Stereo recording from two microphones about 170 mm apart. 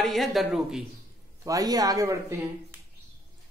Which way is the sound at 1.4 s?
20° right (ahead or behind).